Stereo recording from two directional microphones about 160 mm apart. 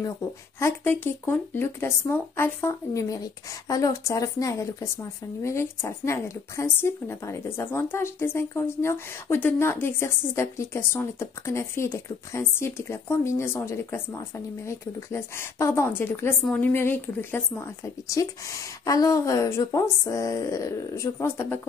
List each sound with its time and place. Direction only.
0.6 s a woman's voice: 15° left (ahead or behind)